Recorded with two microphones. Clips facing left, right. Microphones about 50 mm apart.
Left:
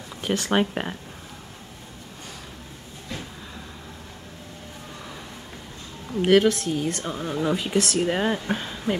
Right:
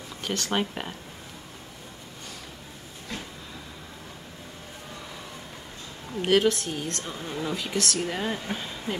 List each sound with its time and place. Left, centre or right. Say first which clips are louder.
0.2 s speech: left 5 dB; centre
6.2 s a woman's voice: left 4 dB; centre
7.1 s speech: left 7 dB; left
8.0 s speech: left 6 dB; left
8.5 s speech: left 5 dB; centre